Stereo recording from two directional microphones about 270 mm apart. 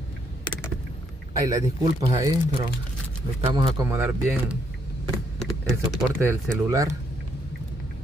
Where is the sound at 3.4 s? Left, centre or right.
Centre.